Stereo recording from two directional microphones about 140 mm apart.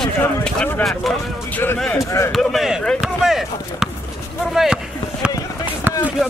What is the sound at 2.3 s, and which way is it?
Speech, centre (ahead or behind).